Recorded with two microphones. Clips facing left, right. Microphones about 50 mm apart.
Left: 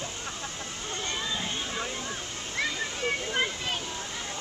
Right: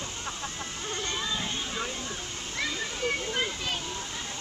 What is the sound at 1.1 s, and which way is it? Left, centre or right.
Water, centre.